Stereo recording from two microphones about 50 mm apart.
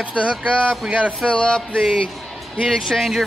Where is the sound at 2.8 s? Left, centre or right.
Centre.